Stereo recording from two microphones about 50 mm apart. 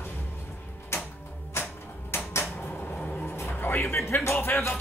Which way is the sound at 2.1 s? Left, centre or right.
Left.